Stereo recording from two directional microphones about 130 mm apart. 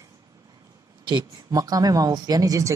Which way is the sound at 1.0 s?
30° right (ahead or behind).